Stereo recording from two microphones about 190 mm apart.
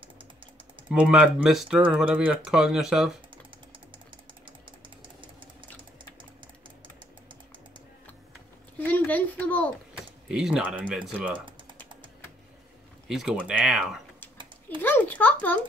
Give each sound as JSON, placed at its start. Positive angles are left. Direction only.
{"t": 0.8, "sound": "speech", "side_deg": -5}
{"t": 4.5, "sound": "a sound", "side_deg": -25}
{"t": 8.7, "sound": "a sound", "side_deg": 10}
{"t": 10.2, "sound": "speech", "side_deg": -5}
{"t": 13.1, "sound": "speech", "side_deg": -5}
{"t": 14.8, "sound": "a child's voice", "side_deg": 10}